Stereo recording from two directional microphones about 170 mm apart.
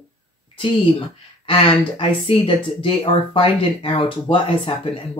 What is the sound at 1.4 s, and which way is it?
Speech, 35° left (ahead or behind).